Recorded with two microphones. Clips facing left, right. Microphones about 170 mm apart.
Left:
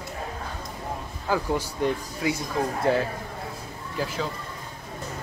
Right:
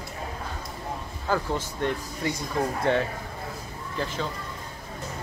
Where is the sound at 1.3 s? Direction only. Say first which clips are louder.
Left 2 dB; 5° left (ahead or behind).